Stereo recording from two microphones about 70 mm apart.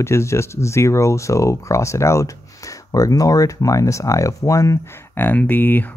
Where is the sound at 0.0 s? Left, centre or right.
Left.